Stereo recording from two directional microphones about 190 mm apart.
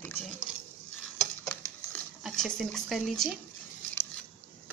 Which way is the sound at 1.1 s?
5° left (ahead or behind).